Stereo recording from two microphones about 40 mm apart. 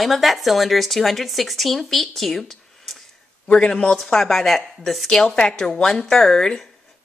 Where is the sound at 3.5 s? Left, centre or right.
Left.